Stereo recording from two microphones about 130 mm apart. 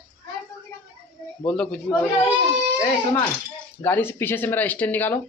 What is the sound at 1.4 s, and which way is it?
Speech, 10° left (ahead or behind).